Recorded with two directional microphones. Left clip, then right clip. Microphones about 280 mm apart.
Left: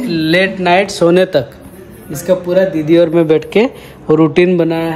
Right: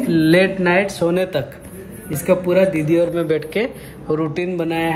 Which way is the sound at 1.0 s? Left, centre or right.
Left.